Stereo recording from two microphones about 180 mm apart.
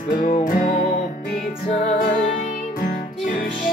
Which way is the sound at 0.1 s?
50° left (ahead or behind).